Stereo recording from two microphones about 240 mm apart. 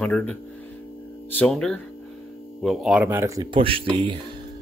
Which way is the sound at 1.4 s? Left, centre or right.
Centre.